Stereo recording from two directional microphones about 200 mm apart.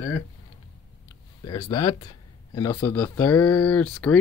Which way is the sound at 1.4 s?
20° left (ahead or behind).